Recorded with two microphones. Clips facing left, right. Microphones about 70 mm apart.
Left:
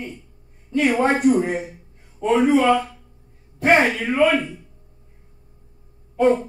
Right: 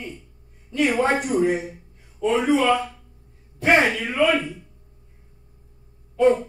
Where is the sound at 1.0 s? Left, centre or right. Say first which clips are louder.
Left 5 dB; centre.